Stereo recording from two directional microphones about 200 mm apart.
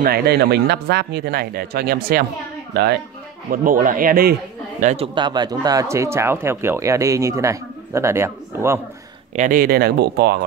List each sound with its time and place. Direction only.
0.0 s speech: 50° right (ahead or behind)
3.6 s speech: 40° right (ahead or behind)
4.8 s speech: 30° right (ahead or behind); by 8.8 s 15° right (ahead or behind)
9.3 s speech: 40° right (ahead or behind)